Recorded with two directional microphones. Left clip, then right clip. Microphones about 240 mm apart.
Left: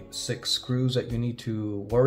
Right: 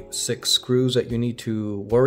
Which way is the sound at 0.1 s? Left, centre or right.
Right.